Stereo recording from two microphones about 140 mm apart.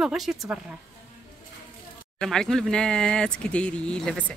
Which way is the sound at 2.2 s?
5° left (ahead or behind).